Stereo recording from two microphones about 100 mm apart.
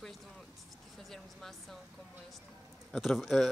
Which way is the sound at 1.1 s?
Centre (ahead or behind).